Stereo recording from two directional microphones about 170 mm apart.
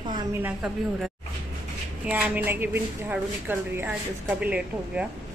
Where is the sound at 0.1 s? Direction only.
15° right (ahead or behind).